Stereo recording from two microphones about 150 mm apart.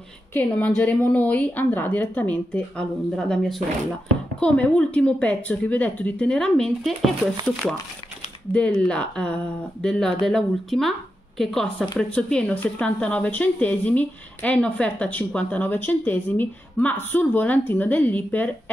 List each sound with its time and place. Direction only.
0.3 s a woman's voice: 10° left (ahead or behind)